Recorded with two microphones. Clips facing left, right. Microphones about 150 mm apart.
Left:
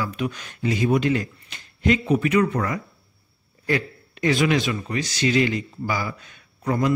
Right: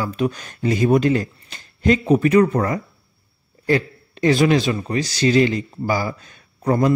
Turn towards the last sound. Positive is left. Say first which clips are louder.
# right 5 dB
turn(degrees=-35)  # may be behind; listen again after turning